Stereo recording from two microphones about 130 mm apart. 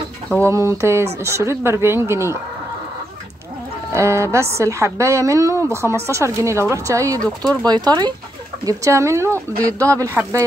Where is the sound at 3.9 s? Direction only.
20° right (ahead or behind).